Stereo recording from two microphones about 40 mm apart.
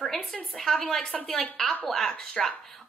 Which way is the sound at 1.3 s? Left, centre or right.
Left.